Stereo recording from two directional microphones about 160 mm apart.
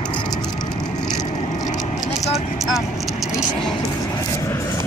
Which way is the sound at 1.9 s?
Centre (ahead or behind).